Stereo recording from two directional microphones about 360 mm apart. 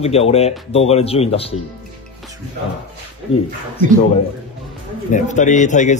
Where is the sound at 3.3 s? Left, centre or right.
Centre.